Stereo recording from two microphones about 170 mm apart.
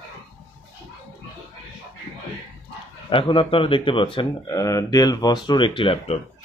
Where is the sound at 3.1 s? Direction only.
30° left (ahead or behind).